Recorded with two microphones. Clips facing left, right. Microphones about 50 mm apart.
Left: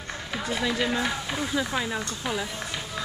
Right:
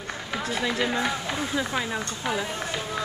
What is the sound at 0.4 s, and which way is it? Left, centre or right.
Run, centre.